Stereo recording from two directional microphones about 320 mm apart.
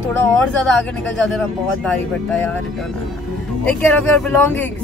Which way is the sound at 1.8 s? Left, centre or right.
Centre.